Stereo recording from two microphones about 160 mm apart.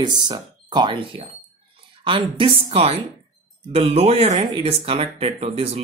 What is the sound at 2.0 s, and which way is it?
Speech, 35° right (ahead or behind).